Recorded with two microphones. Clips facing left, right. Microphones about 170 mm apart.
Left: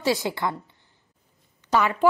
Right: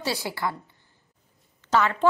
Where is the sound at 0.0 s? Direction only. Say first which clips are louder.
Left 4 dB; 15° left (ahead or behind).